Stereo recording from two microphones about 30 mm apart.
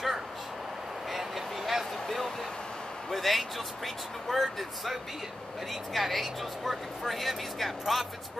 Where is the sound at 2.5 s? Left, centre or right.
Left.